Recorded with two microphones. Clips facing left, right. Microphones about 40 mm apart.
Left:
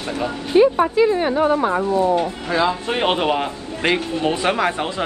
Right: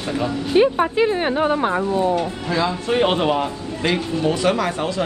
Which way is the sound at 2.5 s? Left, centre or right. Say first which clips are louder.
Even; left.